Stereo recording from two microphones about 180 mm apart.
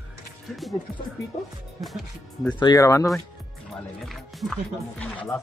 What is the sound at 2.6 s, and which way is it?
Speech, 20° left (ahead or behind).